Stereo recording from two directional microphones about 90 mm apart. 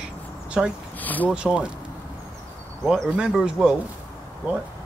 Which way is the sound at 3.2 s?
10° right (ahead or behind).